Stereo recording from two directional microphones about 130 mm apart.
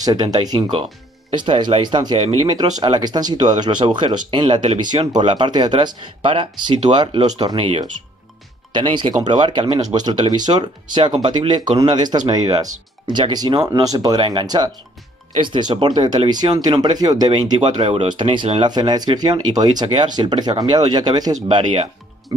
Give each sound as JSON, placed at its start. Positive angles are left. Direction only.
{"t": 0.0, "sound": "speech", "side_deg": -30}
{"t": 2.1, "sound": "speech", "side_deg": -50}
{"t": 2.4, "sound": "speech", "side_deg": -35}
{"t": 7.5, "sound": "speech", "side_deg": -45}
{"t": 9.2, "sound": "speech", "side_deg": -35}
{"t": 17.6, "sound": "speech", "side_deg": -40}